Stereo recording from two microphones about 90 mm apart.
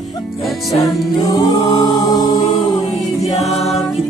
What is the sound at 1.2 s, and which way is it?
Choir, 45° left (ahead or behind).